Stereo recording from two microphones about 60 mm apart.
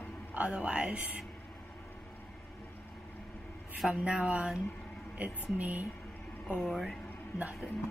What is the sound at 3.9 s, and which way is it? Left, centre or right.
Speech, centre.